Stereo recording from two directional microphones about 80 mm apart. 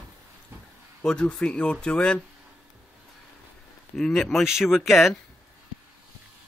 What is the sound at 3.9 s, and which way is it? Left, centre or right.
Speech, centre.